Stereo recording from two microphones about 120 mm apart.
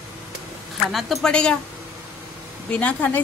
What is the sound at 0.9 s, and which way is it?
Speech, 5° left (ahead or behind).